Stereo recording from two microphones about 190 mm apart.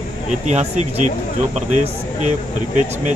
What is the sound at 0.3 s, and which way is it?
Speech, 40° right (ahead or behind).